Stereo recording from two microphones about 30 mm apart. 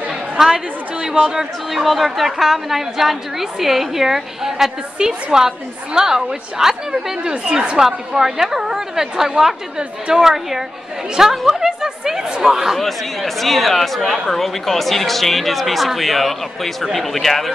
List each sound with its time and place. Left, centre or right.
0.4 s a woman's voice: centre
1.2 s a woman's voice: right
1.7 s a woman's voice: centre
4.9 s a woman's voice: right
7.8 s a woman's voice: centre
9.8 s a woman's voice: right
10.2 s a woman's voice: centre
12.7 s a man's voice: centre